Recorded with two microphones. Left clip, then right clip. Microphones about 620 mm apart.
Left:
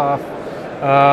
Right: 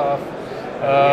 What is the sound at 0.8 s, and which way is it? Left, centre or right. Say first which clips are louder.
Speech: left 3 dB; left.